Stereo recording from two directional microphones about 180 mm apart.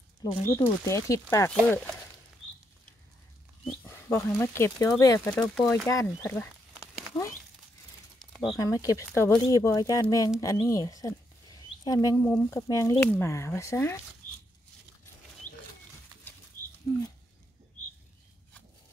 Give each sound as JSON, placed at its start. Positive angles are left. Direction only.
{"t": 0.2, "sound": "speech", "side_deg": 15}
{"t": 3.6, "sound": "speech", "side_deg": 10}
{"t": 5.3, "sound": "speech", "side_deg": 0}
{"t": 5.9, "sound": "speech", "side_deg": 15}
{"t": 8.3, "sound": "a sound", "side_deg": 0}
{"t": 8.5, "sound": "speech", "side_deg": 20}